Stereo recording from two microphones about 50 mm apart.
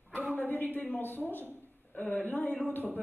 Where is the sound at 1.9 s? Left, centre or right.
Left.